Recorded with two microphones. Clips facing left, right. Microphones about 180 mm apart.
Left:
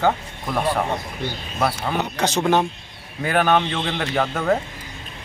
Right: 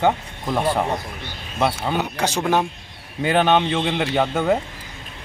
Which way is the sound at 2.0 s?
10° right (ahead or behind).